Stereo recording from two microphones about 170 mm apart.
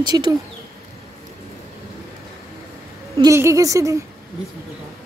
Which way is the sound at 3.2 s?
15° right (ahead or behind).